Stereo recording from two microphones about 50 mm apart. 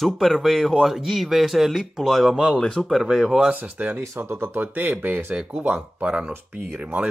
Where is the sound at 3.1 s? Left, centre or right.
Centre.